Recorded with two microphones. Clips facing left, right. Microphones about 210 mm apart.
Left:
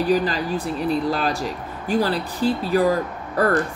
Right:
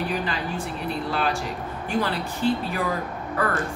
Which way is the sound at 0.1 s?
35° left (ahead or behind).